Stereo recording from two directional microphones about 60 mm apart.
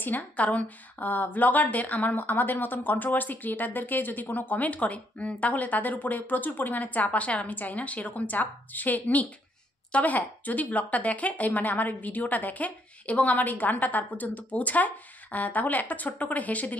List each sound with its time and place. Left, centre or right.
0.0 s speech: left